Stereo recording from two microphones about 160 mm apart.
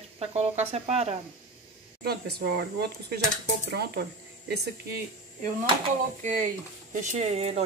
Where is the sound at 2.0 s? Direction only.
90° right.